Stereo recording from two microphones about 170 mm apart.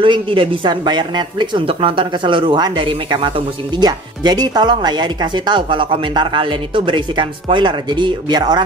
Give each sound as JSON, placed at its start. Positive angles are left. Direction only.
{"t": 0.0, "sound": "speech", "side_deg": -30}